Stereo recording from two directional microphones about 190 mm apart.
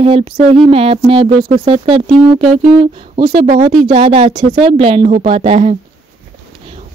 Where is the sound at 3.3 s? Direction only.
45° right (ahead or behind).